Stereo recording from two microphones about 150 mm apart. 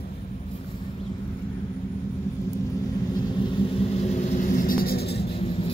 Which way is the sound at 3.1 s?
25° left (ahead or behind).